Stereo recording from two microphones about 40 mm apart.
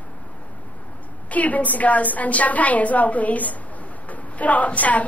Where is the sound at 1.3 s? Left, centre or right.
Left.